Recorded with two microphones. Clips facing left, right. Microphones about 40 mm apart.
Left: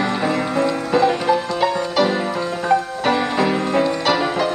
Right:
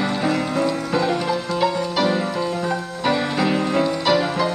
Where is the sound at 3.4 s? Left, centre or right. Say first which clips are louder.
Even; centre.